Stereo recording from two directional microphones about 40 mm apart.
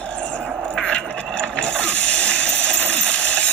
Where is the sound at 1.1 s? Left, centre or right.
Left.